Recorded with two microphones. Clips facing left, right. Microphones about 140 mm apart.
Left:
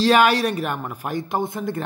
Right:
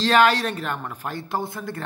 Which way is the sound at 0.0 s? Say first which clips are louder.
Left 2 dB; 10° left (ahead or behind).